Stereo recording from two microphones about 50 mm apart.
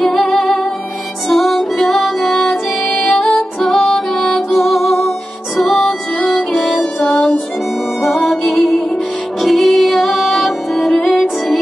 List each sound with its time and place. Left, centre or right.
0.0 s music: centre
1.3 s music: centre
8.5 s music: left
9.4 s music: centre
10.9 s music: left